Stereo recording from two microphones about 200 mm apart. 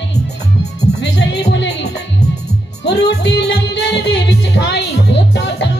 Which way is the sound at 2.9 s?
60° left (ahead or behind).